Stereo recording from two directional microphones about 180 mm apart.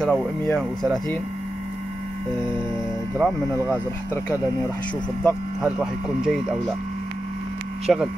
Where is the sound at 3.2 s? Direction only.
5° right (ahead or behind).